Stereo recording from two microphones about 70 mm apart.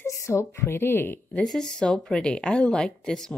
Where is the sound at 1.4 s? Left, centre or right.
Centre.